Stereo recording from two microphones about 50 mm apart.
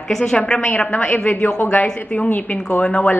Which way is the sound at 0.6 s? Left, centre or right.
Left.